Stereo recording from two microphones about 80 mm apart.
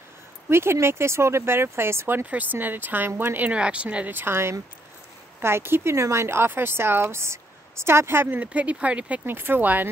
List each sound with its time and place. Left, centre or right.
0.5 s speech: right